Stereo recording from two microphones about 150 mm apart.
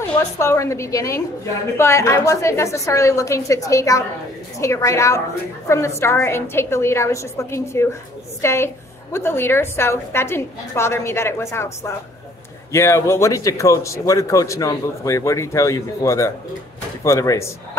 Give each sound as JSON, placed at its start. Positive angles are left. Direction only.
{"t": 0.4, "sound": "a man's voice", "side_deg": 20}